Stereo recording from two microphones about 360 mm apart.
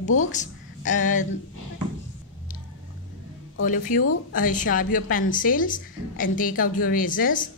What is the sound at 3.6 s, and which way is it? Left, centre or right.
A woman's voice, left.